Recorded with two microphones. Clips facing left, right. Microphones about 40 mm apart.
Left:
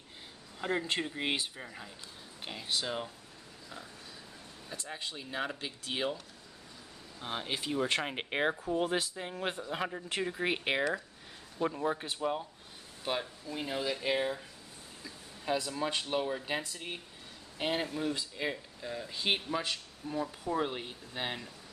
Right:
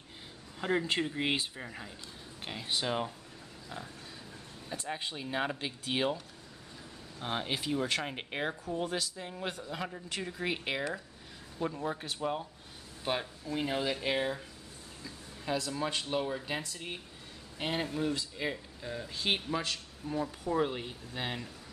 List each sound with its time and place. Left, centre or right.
0.6 s speech: centre
4.7 s speech: centre
7.9 s speech: centre
15.0 s speech: centre